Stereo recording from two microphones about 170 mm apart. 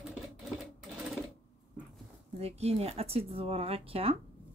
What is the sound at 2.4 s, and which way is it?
Speech, 35° right (ahead or behind).